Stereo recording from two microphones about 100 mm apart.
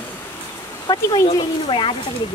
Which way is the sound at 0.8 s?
40° left (ahead or behind).